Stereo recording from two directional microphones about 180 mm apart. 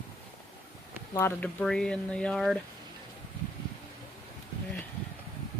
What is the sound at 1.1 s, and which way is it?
Speech, 10° left (ahead or behind).